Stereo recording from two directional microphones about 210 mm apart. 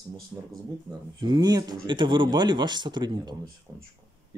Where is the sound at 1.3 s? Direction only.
20° right (ahead or behind).